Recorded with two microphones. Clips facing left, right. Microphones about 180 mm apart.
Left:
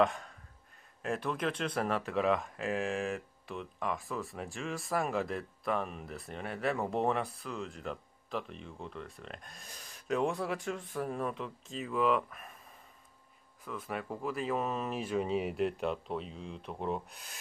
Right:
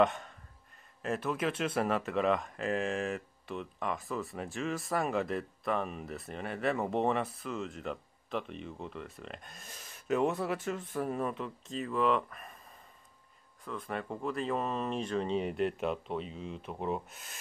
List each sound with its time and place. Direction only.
0.0 s speech: centre (ahead or behind)
13.7 s speech: 5° left (ahead or behind)